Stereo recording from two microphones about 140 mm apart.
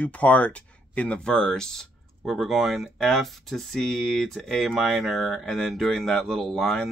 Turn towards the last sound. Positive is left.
turn(degrees=5)  # may be behind; listen again after turning